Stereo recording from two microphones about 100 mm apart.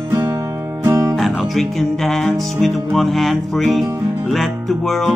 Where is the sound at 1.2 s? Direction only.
Centre (ahead or behind).